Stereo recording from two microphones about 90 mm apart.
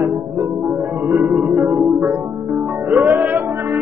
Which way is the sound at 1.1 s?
15° right (ahead or behind).